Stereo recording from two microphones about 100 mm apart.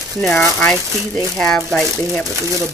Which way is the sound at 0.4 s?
25° left (ahead or behind).